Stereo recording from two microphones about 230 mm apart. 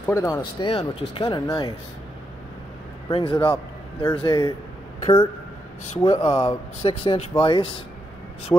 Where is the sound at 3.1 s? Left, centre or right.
Left.